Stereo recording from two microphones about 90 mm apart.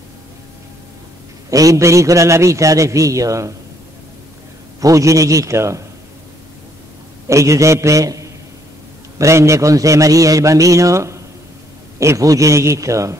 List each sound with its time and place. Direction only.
1.5 s a man's voice: 40° right (ahead or behind)
4.7 s a man's voice: 40° right (ahead or behind)
7.2 s a man's voice: 35° right (ahead or behind)